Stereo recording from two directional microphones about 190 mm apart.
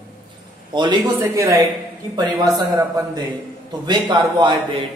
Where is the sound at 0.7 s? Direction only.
25° right (ahead or behind).